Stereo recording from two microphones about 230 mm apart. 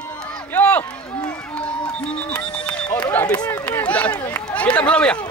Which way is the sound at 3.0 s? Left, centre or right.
Centre.